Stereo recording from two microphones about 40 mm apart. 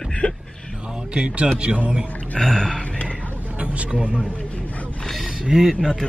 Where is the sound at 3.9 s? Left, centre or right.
Right.